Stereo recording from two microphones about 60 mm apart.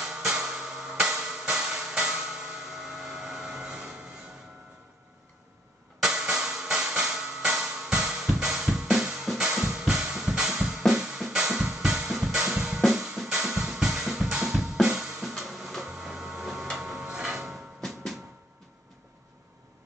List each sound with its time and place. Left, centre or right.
0.0 s music: centre
5.9 s music: centre
12.4 s drum: centre
12.8 s music: centre
15.9 s printer: centre
16.7 s a sound: centre
17.7 s drum: centre